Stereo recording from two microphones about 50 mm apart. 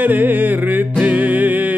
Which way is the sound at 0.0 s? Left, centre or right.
Right.